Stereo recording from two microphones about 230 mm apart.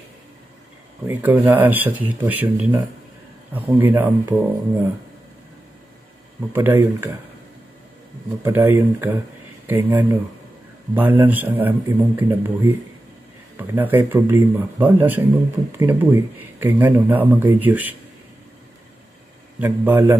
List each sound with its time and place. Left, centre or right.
1.0 s speech: centre
6.5 s speech: centre
8.4 s speech: centre
19.6 s speech: centre